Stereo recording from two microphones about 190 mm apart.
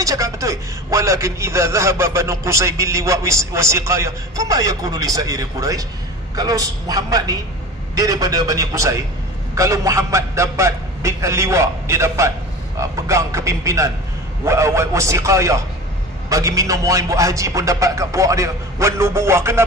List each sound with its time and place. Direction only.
0.0 s a man's voice: 15° right (ahead or behind)